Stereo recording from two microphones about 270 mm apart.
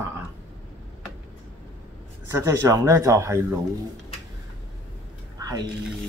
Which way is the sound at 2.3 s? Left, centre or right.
Centre.